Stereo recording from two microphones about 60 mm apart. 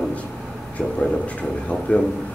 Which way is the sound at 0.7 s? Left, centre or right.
Left.